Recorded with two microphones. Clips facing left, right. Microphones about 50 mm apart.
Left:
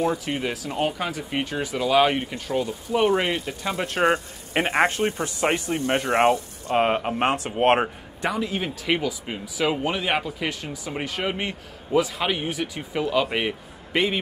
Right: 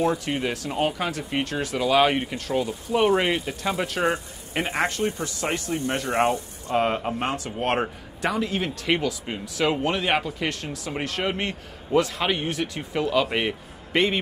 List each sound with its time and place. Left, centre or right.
0.0 s speech: centre
3.9 s speech: left
8.2 s speech: centre